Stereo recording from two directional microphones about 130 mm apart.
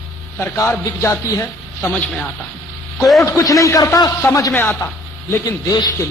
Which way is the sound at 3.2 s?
25° left (ahead or behind).